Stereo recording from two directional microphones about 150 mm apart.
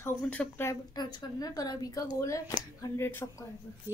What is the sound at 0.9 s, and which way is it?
A woman's voice, 25° left (ahead or behind).